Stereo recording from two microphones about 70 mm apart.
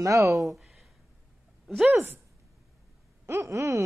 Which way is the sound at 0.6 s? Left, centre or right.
Centre.